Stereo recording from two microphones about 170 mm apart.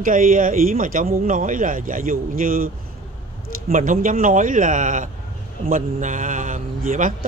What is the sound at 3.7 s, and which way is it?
A man's voice, 50° right (ahead or behind).